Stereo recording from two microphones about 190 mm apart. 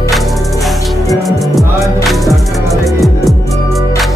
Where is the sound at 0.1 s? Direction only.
Centre (ahead or behind).